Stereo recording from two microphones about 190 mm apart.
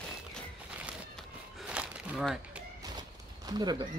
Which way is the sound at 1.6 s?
5° right (ahead or behind).